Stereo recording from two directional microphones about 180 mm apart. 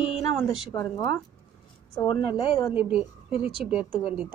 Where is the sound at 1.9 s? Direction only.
15° left (ahead or behind).